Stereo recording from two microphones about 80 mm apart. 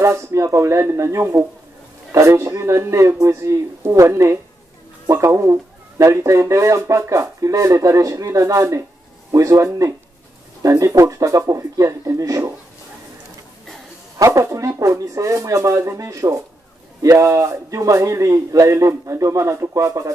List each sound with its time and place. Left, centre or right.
0.0 s speech: right
14.1 s speech: right